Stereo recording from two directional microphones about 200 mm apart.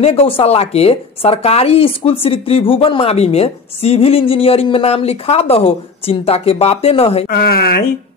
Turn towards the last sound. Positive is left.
turn(degrees=50)  # may be behind; listen again after turning